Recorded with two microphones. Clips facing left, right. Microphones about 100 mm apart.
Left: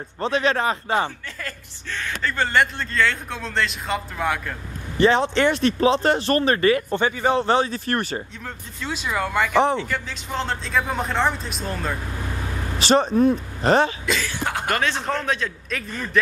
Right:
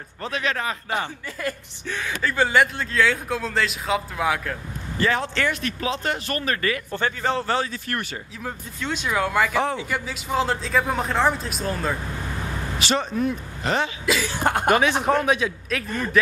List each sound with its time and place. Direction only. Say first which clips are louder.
0.2 s speech: left 5 dB; 30° left (ahead or behind)
1.4 s speech: right 8 dB; 10° right (ahead or behind)
4.9 s speech: left 6 dB; 20° left (ahead or behind)
7.0 s speech: left 4 dB; 10° left (ahead or behind)
7.7 s speech: left 5 dB; 35° left (ahead or behind)
8.5 s speech: right 5 dB; centre (ahead or behind)
12.7 s speech: left 7 dB; 35° left (ahead or behind)
14.3 s speech: right 4 dB; 50° right (ahead or behind)
14.7 s a man's voice: right 5 dB; 15° right (ahead or behind)
15.7 s speech: right 2 dB; centre (ahead or behind)